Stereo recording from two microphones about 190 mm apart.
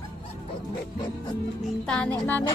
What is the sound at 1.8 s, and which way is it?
Music, 5° left (ahead or behind).